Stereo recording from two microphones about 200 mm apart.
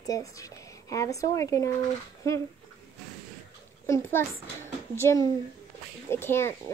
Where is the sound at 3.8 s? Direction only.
10° left (ahead or behind).